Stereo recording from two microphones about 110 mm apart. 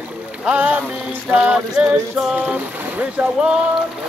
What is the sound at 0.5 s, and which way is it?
Music, 10° right (ahead or behind).